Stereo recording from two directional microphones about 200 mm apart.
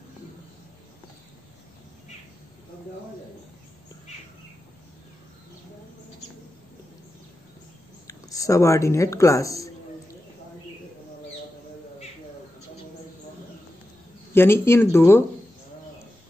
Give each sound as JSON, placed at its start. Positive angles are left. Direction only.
{"t": 8.1, "sound": "speech", "side_deg": 15}
{"t": 14.3, "sound": "speech", "side_deg": 10}